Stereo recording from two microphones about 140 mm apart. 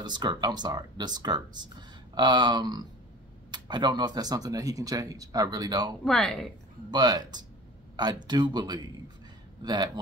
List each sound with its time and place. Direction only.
0.0 s speech: 30° right (ahead or behind)
6.0 s speech: 5° left (ahead or behind)
6.9 s speech: 30° right (ahead or behind)